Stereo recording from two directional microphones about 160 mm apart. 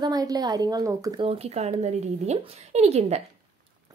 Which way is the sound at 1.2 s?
40° right (ahead or behind).